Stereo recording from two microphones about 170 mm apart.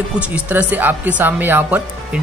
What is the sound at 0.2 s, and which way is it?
Speech, 10° right (ahead or behind).